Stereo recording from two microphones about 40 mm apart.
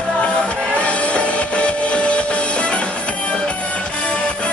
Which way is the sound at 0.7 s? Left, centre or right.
Left.